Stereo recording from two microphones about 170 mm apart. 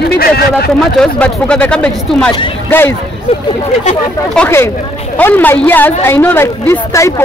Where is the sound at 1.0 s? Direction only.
5° left (ahead or behind).